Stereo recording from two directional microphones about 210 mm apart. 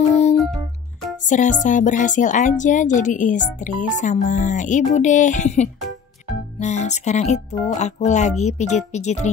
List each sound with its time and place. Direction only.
0.1 s music: 30° left (ahead or behind)
1.2 s speech: 35° left (ahead or behind)